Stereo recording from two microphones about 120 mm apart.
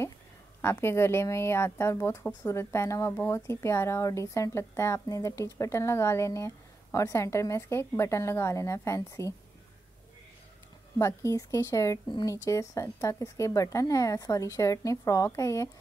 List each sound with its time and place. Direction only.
0.6 s a woman's voice: 20° left (ahead or behind)
11.0 s a woman's voice: 25° left (ahead or behind)